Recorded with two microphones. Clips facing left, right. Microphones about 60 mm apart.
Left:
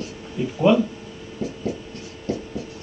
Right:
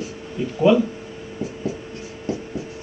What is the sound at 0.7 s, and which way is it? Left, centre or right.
Speech, centre.